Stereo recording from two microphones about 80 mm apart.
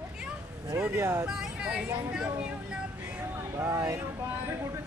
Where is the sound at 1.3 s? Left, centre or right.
Centre.